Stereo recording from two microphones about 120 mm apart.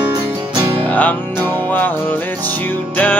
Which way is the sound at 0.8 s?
15° left (ahead or behind).